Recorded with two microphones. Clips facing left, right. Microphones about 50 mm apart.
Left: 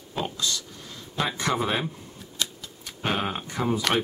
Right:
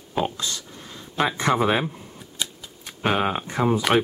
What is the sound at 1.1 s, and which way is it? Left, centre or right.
Speech, right.